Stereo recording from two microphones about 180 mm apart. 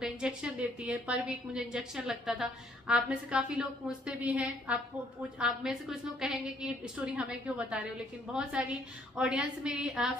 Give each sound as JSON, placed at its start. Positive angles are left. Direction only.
{"t": 0.0, "sound": "a woman's voice", "side_deg": -5}